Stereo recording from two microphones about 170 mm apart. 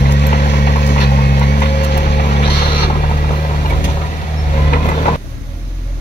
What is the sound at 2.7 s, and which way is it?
Vehicle, 65° left (ahead or behind).